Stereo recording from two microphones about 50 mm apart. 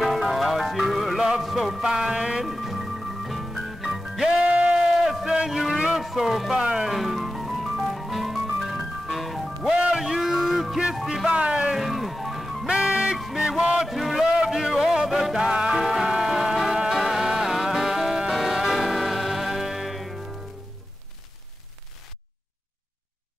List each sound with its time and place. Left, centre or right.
0.0 s music: centre
1.8 s music: centre
2.4 s music: centre
4.4 s music: right
5.2 s a sound: centre
5.9 s speech: centre
6.6 s music: centre
9.7 s music: centre
11.2 s music: right
11.7 s music: centre
12.6 s music: centre
13.8 s a sound: centre
14.2 s a sound: centre
14.8 s music: centre